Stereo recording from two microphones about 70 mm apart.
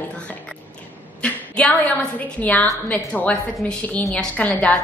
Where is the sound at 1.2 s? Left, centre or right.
Centre.